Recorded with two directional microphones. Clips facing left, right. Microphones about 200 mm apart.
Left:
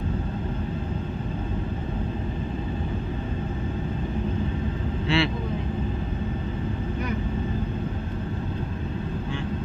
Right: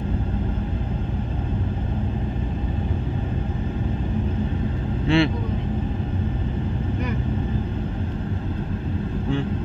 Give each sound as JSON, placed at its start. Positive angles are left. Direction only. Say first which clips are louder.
{"t": 5.0, "sound": "vehicle", "louder": "right 5 dB", "side_deg": -50}